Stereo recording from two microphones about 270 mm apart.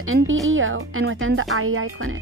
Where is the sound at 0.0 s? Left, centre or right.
Right.